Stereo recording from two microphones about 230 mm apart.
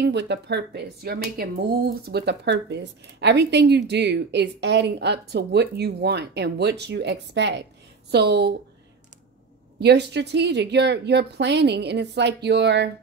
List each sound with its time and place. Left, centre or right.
0.0 s speech: right
9.8 s speech: right